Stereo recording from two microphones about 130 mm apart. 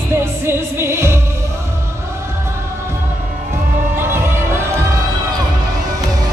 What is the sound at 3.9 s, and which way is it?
Music, 20° right (ahead or behind).